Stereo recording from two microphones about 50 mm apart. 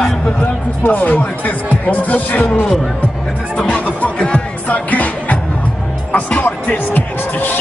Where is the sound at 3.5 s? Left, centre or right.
Centre.